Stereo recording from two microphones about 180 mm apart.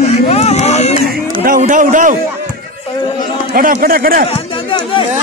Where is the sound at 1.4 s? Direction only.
50° right (ahead or behind).